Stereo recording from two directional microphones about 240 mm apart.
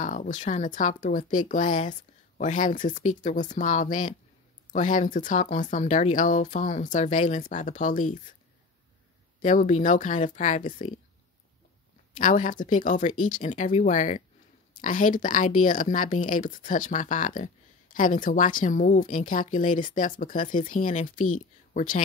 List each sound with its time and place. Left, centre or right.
0.0 s a woman's voice: left
9.4 s a woman's voice: left
12.2 s a woman's voice: left